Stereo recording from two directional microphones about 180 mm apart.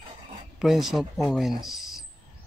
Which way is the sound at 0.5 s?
Centre (ahead or behind).